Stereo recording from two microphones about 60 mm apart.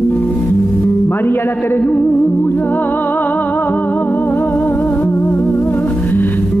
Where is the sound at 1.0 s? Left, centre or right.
Left.